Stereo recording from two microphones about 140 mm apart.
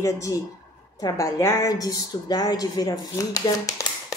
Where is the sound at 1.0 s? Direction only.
25° left (ahead or behind).